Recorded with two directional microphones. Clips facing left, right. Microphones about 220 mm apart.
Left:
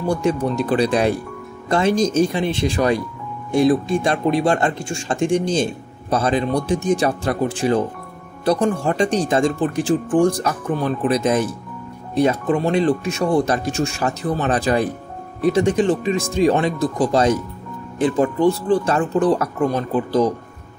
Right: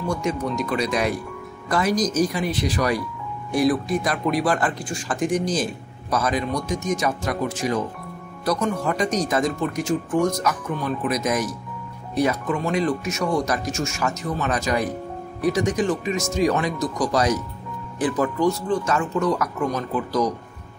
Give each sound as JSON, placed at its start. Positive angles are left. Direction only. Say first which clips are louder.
{"t": 0.0, "sound": "speech", "louder": "left 5 dB", "side_deg": 30}